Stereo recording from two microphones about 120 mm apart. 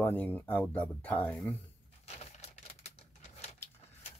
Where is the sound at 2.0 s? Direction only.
65° left (ahead or behind).